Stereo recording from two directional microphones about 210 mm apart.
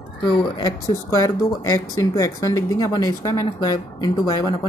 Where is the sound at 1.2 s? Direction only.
15° left (ahead or behind).